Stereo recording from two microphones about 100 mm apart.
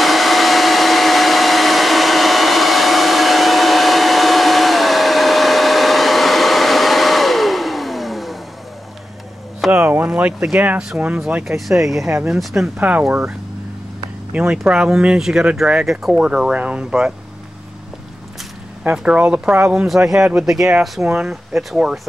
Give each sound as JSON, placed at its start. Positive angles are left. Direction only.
{"t": 0.0, "sound": "hair dryer", "side_deg": 0}
{"t": 9.7, "sound": "speech", "side_deg": -20}
{"t": 12.7, "sound": "speech", "side_deg": -15}
{"t": 14.3, "sound": "speech", "side_deg": -5}
{"t": 19.0, "sound": "speech", "side_deg": -10}